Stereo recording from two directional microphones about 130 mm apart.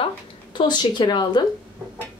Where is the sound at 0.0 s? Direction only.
35° left (ahead or behind).